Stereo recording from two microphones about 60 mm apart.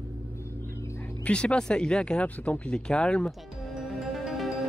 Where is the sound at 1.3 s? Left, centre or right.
Centre.